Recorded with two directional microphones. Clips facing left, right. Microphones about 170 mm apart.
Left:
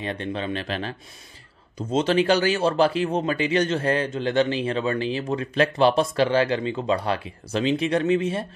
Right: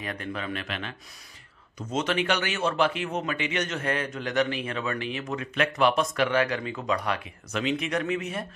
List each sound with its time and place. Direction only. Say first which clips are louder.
0.0 s speech: left 5 dB; 30° left (ahead or behind)